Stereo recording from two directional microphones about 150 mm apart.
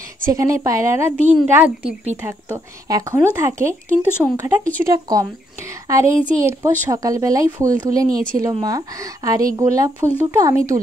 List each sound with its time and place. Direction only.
0.2 s a woman's voice: 20° right (ahead or behind)